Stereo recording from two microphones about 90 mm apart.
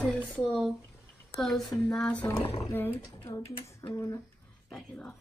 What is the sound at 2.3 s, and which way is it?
Speech, 90° left.